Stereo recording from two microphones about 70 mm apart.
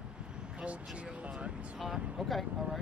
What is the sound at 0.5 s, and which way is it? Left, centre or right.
Speech, centre.